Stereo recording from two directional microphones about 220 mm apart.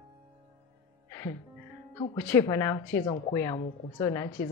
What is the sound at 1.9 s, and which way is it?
A woman's voice, 10° left (ahead or behind).